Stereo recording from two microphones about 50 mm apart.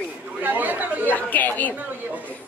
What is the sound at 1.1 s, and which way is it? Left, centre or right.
Speech, left.